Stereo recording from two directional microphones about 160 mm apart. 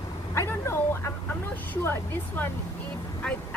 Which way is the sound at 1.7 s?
10° left (ahead or behind).